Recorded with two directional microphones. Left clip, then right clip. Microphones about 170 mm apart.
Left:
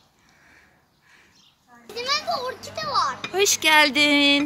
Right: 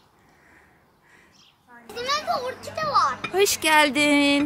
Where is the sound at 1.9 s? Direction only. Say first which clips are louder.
Even; 40° left (ahead or behind).